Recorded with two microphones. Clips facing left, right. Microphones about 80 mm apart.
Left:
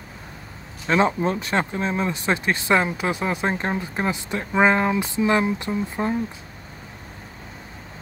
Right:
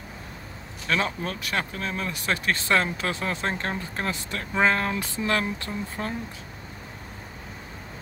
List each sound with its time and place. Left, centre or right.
0.8 s speech: left